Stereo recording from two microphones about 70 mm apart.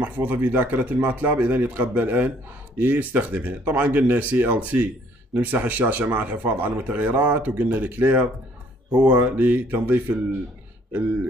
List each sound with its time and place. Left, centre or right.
0.0 s speech: right